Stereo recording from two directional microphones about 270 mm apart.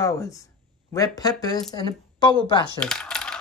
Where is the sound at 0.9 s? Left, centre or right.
Centre.